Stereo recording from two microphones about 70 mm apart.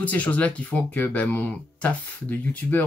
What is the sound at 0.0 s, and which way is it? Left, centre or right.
Speech, left.